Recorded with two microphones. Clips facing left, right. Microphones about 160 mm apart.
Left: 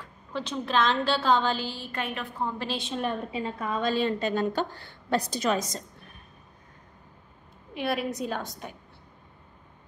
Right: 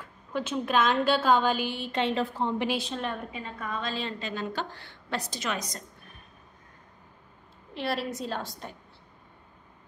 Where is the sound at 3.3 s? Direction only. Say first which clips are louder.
Left 6 dB; 30° left (ahead or behind).